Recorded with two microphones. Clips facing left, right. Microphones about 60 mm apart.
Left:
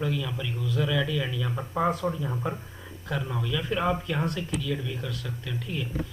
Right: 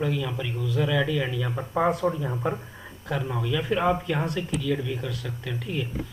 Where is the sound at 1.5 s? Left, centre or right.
Centre.